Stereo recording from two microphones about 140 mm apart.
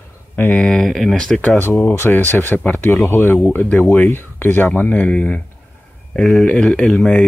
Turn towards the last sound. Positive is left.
turn(degrees=0)  # may be behind; listen again after turning